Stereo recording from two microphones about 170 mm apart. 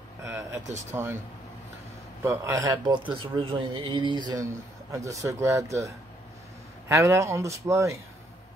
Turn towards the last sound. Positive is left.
turn(degrees=-15)  # may be behind; listen again after turning